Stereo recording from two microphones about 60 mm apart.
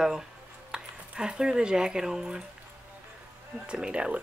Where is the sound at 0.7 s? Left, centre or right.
Centre.